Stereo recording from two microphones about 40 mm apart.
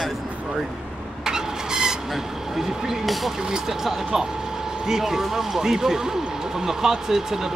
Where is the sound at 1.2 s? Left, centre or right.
Centre.